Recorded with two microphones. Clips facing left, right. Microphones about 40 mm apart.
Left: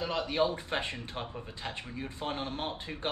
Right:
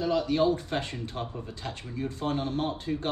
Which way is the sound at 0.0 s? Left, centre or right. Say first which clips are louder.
Right 5 dB; left.